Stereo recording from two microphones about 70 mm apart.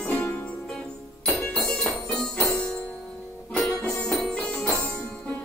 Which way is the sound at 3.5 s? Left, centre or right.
Centre.